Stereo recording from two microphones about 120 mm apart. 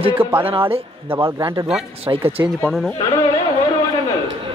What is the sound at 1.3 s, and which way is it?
Speech, 35° right (ahead or behind).